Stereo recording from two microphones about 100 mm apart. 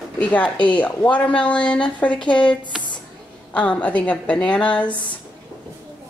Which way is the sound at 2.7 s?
5° right (ahead or behind).